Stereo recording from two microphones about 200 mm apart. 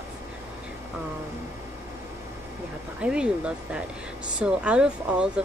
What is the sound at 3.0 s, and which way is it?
Speech, 5° right (ahead or behind).